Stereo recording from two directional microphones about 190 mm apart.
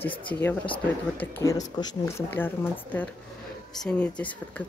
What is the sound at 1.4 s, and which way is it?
Speech, 20° left (ahead or behind).